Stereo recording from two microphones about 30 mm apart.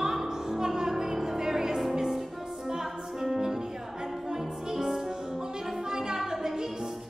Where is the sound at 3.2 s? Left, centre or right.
Centre.